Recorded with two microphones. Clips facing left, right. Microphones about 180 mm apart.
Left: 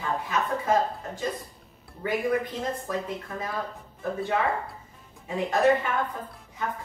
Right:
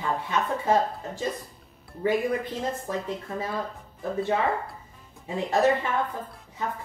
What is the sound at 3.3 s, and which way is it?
Speech, 25° right (ahead or behind).